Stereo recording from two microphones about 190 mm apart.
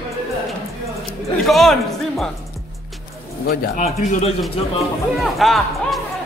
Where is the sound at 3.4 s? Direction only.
45° left (ahead or behind).